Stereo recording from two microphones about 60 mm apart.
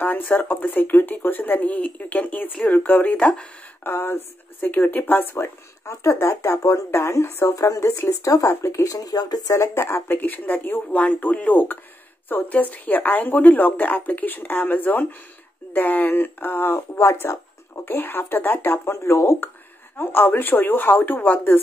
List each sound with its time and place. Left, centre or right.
0.0 s a woman's voice: left
3.8 s speech: left
4.6 s speech: left
7.5 s speech: left
7.8 s speech: left
9.6 s speech: left
10.1 s a woman's voice: left